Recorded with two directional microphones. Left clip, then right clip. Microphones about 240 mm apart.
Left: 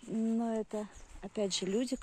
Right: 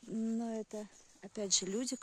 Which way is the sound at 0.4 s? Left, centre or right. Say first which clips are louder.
Left 6 dB; centre.